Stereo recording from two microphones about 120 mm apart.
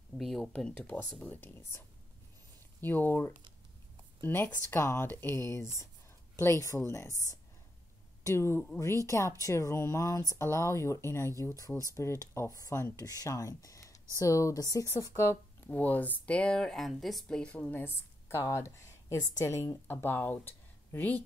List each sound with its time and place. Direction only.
0.2 s speech: centre (ahead or behind)